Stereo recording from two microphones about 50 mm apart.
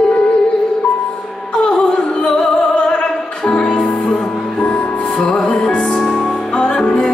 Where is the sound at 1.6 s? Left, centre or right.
Centre.